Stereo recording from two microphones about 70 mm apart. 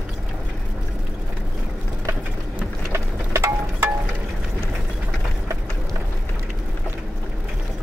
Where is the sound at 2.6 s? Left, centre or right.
Right.